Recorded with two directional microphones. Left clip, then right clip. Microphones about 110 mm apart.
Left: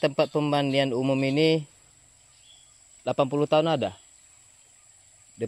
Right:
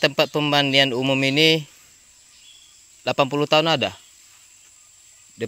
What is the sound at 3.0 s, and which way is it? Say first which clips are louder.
Speech: right 4 dB; 25° right (ahead or behind).